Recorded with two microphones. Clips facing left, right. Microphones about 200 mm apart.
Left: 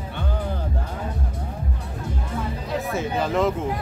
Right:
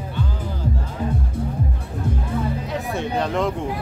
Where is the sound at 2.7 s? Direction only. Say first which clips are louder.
Left 2 dB; centre (ahead or behind).